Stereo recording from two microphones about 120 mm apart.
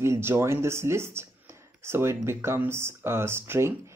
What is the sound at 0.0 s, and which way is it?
Speech, 20° right (ahead or behind).